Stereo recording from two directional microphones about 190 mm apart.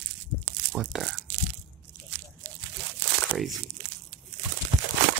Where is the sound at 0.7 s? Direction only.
Centre (ahead or behind).